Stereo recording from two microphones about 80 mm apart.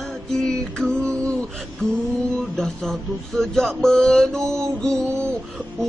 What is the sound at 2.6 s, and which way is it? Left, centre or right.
Speech, centre.